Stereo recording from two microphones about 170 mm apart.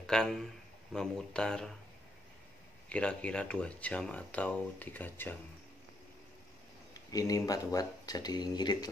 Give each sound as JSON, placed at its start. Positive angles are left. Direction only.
{"t": 0.0, "sound": "a man's voice", "side_deg": 5}
{"t": 2.9, "sound": "speech", "side_deg": 5}
{"t": 6.9, "sound": "speech", "side_deg": 20}